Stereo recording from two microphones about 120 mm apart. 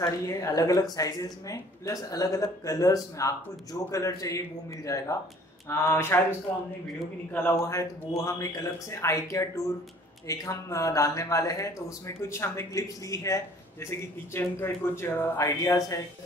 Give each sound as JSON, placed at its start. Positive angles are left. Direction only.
{"t": 0.0, "sound": "speech", "side_deg": 25}
{"t": 7.6, "sound": "speech", "side_deg": 25}